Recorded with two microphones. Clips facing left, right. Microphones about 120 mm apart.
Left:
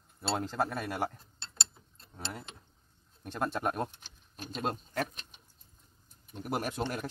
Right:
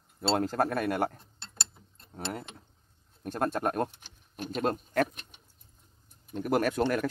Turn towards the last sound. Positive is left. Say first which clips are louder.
# right 8 dB
turn(degrees=-55)  # may be behind; listen again after turning